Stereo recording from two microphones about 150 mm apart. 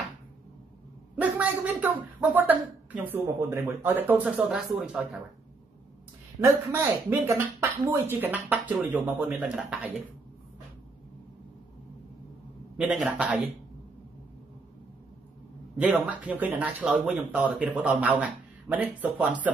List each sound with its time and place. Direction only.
1.2 s a man's voice: 10° right (ahead or behind)
6.4 s speech: 15° right (ahead or behind)
12.7 s speech: 5° right (ahead or behind)
15.8 s speech: 10° right (ahead or behind)